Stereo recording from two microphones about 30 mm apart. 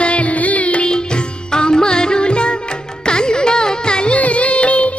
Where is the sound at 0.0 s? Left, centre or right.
Left.